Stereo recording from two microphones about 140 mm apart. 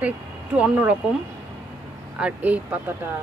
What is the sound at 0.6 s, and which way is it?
Speech, 10° right (ahead or behind).